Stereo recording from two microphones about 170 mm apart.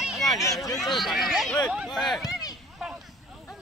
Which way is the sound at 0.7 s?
Centre (ahead or behind).